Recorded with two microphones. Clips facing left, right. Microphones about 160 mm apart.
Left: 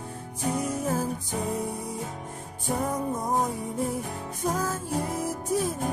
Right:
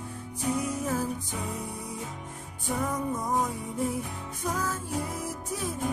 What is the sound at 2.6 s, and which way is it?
Music, 35° left (ahead or behind).